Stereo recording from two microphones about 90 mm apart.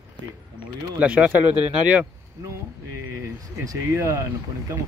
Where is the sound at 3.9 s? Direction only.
35° right (ahead or behind).